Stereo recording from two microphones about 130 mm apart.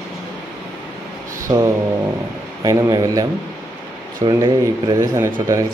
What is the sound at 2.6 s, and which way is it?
Speech, 25° right (ahead or behind).